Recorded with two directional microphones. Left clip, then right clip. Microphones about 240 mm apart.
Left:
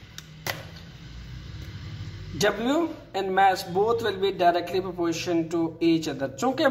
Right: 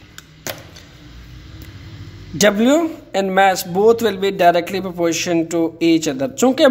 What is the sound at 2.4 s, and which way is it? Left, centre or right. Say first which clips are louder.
A man's voice: right 10 dB; right.